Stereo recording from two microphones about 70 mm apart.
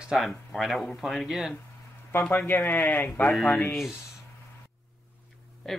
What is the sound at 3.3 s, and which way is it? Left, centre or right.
Speech, centre.